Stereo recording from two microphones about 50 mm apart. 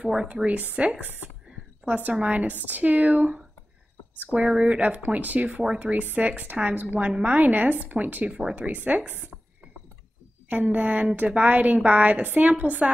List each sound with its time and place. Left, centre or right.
0.5 s a woman's voice: right
2.1 s speech: centre
2.4 s a woman's voice: right
4.6 s a woman's voice: right
7.0 s speech: right
7.3 s a woman's voice: right
8.3 s speech: centre
8.5 s a woman's voice: right
10.5 s a woman's voice: right